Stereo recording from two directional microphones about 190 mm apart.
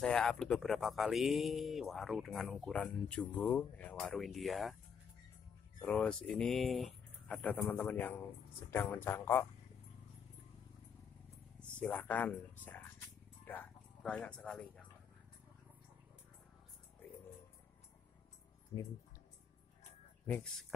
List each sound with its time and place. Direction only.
0.0 s speech: 5° left (ahead or behind)
5.8 s speech: 5° left (ahead or behind)
11.6 s speech: 10° left (ahead or behind)
13.5 s a sound: 10° left (ahead or behind)
18.7 s speech: 15° left (ahead or behind)